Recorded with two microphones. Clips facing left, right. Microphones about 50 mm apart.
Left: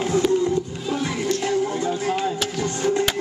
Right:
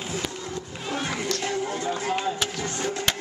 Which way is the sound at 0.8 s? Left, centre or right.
Right.